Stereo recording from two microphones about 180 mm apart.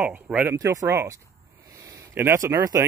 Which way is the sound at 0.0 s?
10° right (ahead or behind).